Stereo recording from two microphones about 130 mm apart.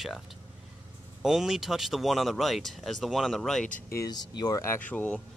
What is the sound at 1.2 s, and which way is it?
Speech, 5° right (ahead or behind).